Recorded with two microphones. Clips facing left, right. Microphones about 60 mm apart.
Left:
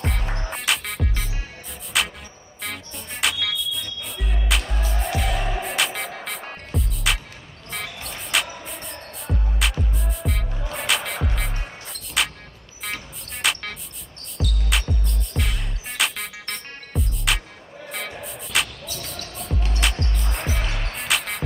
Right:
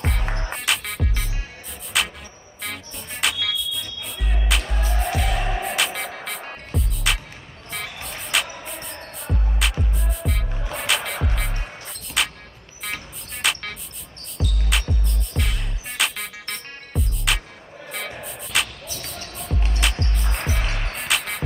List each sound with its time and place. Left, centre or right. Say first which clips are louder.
0.0 s music: right 1 dB; centre
19.0 s basketball bounce: right 1 dB; centre
19.8 s music: even; centre
20.6 s music: right 1 dB; centre
20.9 s music: even; centre